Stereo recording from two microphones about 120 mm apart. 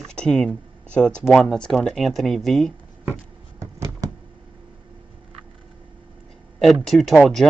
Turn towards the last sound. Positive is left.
turn(degrees=0)  # may be behind; listen again after turning